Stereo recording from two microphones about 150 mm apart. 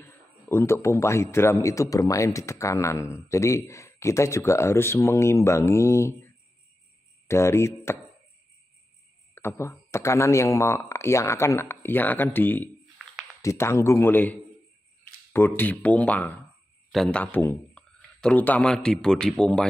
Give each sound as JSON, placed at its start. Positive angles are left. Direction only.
{"t": 0.0, "sound": "a man's voice", "side_deg": 20}
{"t": 9.3, "sound": "a man's voice", "side_deg": 15}